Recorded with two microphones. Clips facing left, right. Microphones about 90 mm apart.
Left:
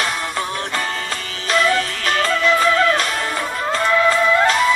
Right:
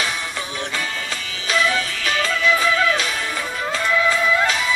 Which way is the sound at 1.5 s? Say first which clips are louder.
Left 3 dB; 45° left (ahead or behind).